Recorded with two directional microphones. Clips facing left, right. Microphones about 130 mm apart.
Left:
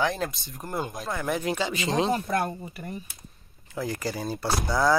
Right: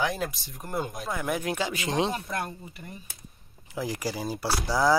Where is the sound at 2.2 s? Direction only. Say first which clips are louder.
Left 6 dB; 55° left (ahead or behind).